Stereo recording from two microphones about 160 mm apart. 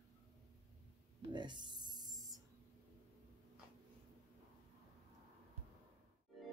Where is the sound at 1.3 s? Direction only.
30° right (ahead or behind).